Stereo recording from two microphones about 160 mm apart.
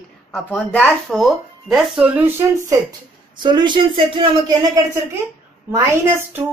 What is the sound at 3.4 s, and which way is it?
A woman's voice, 30° right (ahead or behind).